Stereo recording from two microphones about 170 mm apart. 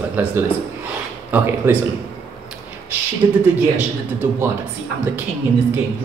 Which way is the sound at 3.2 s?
25° right (ahead or behind).